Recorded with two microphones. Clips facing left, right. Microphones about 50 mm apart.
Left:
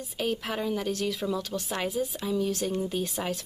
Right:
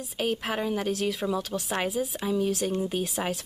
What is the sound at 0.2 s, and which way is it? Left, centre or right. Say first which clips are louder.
A woman's voice: right 2 dB; centre.